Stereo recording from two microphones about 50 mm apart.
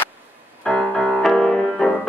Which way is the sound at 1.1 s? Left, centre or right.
Centre.